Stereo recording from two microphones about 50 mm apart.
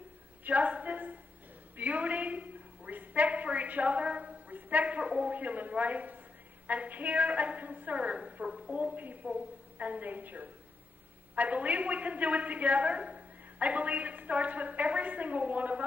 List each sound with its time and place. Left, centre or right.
0.4 s a woman's voice: right; by 8.7 s centre
8.7 s a woman's voice: right